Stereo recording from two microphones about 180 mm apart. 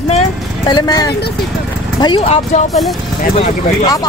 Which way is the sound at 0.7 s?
25° left (ahead or behind).